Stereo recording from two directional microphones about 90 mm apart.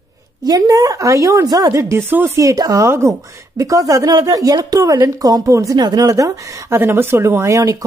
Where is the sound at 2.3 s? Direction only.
40° right (ahead or behind).